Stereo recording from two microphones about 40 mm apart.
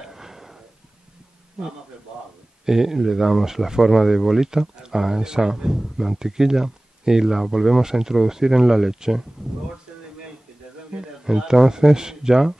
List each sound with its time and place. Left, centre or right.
0.0 s a sound: centre
2.6 s speech: centre
11.0 s speech: centre